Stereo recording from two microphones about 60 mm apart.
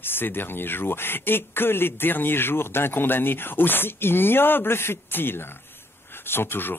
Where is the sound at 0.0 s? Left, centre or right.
Left.